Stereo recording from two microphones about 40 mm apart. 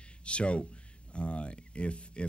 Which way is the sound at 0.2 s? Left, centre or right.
Left.